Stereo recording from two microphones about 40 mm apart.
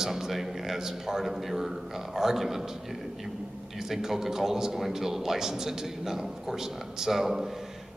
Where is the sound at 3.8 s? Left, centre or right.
Centre.